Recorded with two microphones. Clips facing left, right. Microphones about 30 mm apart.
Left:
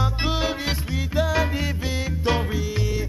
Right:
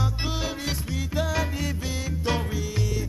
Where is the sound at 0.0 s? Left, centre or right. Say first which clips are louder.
Left 5 dB; left.